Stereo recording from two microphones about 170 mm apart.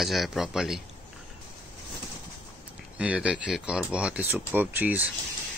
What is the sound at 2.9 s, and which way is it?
Speech, 5° right (ahead or behind).